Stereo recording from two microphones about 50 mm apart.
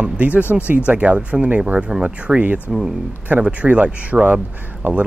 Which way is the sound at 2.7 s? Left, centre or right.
Centre.